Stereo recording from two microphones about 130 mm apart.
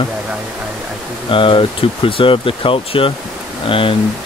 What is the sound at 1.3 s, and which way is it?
Speech, 40° left (ahead or behind).